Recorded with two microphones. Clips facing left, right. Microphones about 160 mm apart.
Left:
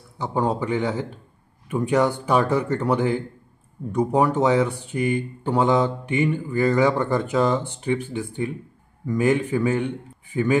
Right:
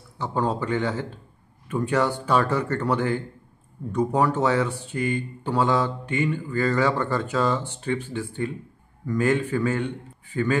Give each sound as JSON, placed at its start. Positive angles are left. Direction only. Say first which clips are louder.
{"t": 0.2, "sound": "speech", "louder": "left 2 dB", "side_deg": 15}